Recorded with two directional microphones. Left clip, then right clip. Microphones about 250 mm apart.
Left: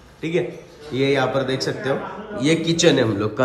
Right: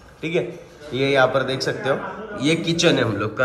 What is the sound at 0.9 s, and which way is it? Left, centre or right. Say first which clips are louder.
Speech: left 1 dB; centre.